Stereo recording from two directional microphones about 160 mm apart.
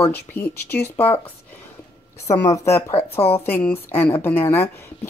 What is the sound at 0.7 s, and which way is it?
Speech, 10° left (ahead or behind).